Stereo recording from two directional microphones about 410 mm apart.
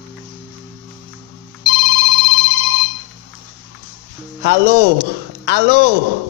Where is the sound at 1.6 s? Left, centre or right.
Right.